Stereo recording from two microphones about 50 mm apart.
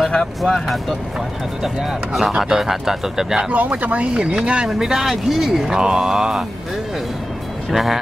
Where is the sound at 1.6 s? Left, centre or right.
Centre.